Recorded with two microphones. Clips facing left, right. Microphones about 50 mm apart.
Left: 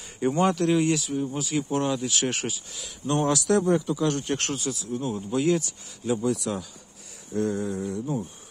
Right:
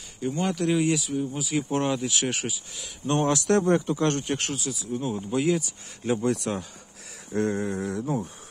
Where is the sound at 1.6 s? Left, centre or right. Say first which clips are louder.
Right 1 dB; right.